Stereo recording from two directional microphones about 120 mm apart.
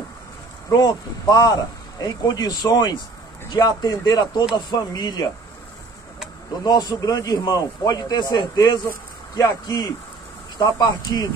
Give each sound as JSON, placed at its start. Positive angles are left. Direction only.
{"t": 0.7, "sound": "a man's voice", "side_deg": 30}
{"t": 6.6, "sound": "a man's voice", "side_deg": 35}